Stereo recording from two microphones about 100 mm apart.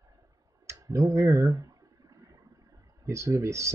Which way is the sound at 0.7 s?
30° right (ahead or behind).